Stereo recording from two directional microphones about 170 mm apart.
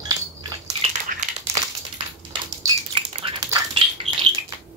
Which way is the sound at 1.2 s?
45° right (ahead or behind).